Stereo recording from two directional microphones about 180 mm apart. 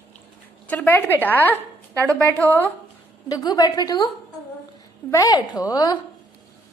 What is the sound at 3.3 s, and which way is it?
Speech, 20° left (ahead or behind).